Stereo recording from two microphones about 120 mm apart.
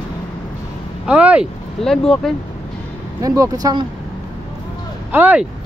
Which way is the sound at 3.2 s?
30° right (ahead or behind).